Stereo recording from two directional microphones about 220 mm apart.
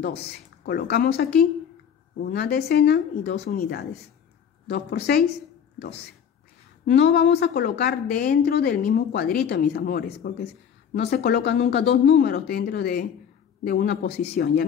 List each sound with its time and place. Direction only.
0.7 s speech: 45° left (ahead or behind)
6.9 s speech: 50° left (ahead or behind)